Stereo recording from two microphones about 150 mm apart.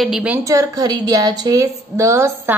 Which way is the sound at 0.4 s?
20° right (ahead or behind).